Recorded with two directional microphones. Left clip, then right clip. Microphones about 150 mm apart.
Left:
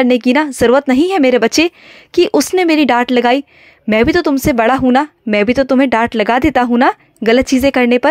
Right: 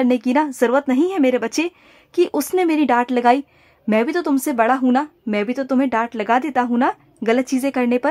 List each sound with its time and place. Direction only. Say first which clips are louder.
0.0 s speech: left 6 dB; 25° left (ahead or behind)